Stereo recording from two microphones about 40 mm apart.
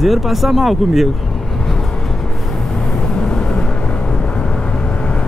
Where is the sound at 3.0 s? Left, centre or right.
Centre.